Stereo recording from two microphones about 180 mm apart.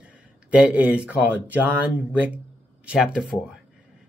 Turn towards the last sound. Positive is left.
turn(degrees=-5)  # may be behind; listen again after turning